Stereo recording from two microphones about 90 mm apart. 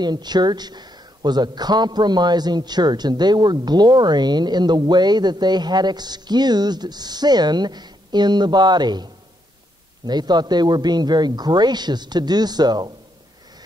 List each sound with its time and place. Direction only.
0.0 s speech: 50° right (ahead or behind)